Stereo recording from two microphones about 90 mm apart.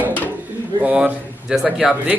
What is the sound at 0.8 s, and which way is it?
Speech, 10° right (ahead or behind).